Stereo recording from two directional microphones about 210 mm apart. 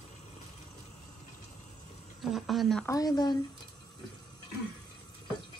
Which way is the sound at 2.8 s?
15° left (ahead or behind).